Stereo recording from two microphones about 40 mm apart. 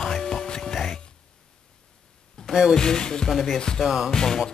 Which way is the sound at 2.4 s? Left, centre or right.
Centre.